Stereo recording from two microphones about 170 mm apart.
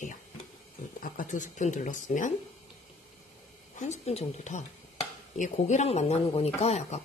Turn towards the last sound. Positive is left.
turn(degrees=40)  # may be behind; listen again after turning